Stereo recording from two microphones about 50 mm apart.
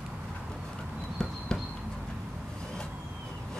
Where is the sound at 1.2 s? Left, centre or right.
Centre.